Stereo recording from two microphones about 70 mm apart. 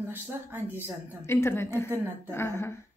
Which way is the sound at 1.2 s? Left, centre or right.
Left.